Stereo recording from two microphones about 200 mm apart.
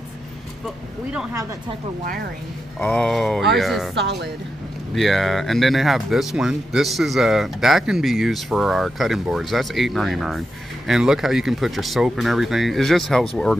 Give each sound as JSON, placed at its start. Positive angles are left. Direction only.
{"t": 2.8, "sound": "speech", "side_deg": 5}
{"t": 3.9, "sound": "speech", "side_deg": -55}
{"t": 4.9, "sound": "speech", "side_deg": 0}